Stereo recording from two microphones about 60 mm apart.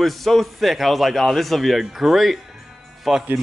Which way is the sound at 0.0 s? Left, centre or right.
Centre.